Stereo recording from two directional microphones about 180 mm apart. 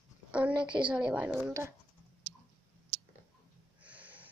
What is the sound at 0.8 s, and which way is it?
Speech, 5° right (ahead or behind).